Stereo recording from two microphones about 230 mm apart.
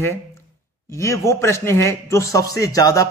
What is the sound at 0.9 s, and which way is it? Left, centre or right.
A man's voice, centre.